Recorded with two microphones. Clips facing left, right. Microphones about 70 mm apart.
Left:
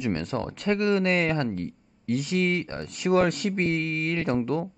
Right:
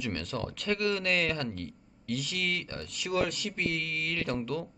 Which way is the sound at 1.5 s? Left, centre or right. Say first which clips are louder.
Left 7 dB; left.